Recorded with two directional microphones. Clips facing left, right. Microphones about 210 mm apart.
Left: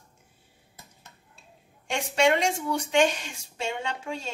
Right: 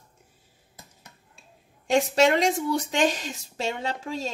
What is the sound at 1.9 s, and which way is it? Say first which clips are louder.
Speech: right 3 dB; 35° right (ahead or behind).